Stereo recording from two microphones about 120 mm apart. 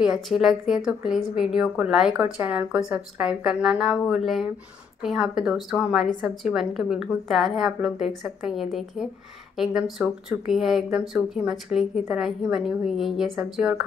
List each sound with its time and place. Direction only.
0.0 s a woman's voice: 5° right (ahead or behind)